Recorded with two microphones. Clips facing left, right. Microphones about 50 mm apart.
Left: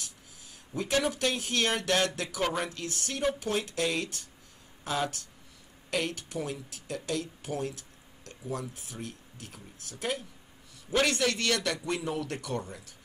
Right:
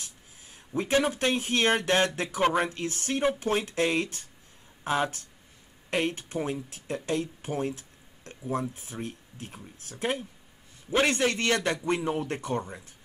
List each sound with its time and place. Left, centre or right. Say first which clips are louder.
0.0 s speech: even; right